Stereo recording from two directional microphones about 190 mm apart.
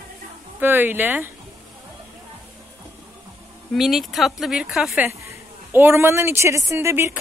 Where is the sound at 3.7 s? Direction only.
Centre (ahead or behind).